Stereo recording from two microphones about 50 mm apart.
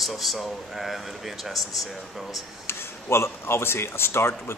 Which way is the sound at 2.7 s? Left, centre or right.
Left.